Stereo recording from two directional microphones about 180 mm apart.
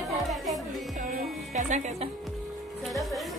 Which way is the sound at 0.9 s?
50° right (ahead or behind).